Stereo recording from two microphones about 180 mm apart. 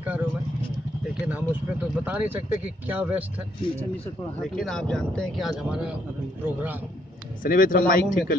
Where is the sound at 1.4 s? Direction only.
10° right (ahead or behind).